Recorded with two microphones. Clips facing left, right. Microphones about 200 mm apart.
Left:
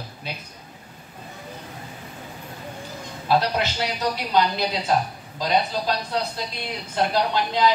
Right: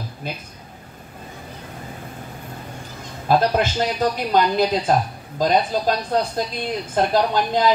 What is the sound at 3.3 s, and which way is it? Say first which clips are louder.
Speech: right 4 dB; 50° right (ahead or behind).